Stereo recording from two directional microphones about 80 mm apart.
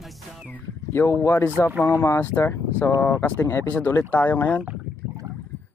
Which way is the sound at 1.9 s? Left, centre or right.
Left.